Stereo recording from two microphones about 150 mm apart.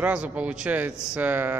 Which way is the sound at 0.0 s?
10° right (ahead or behind).